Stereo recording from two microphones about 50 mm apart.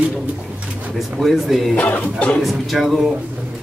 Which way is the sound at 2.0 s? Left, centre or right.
Left.